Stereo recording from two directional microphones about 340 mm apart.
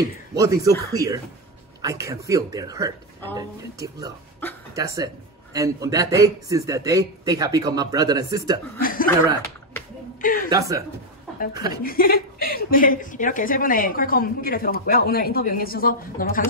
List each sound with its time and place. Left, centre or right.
0.3 s a man's voice: centre
8.8 s a sound: left
10.2 s speech: left
10.5 s a man's voice: centre
11.8 s a woman's voice: left